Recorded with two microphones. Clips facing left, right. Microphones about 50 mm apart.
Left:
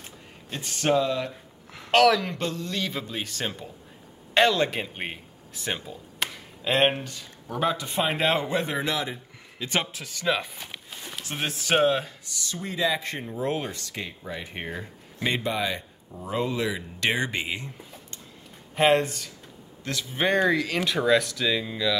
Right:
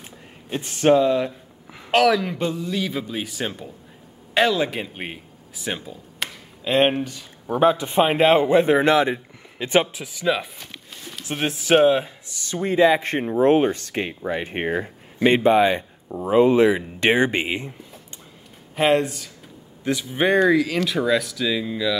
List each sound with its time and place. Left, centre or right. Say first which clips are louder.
0.5 s speech: right 7 dB; right
1.7 s a man's voice: right 2 dB; centre
7.4 s speech: right 8 dB; right
8.7 s a man's voice: right 11 dB; right
9.6 s speech: right 9 dB; right
9.9 s a man's voice: right 4 dB; centre
10.6 s a sound: even; centre
11.2 s speech: right 6 dB; centre
12.4 s speech: right 11 dB; right
18.8 s speech: right 2 dB; centre
19.8 s a man's voice: right 5 dB; centre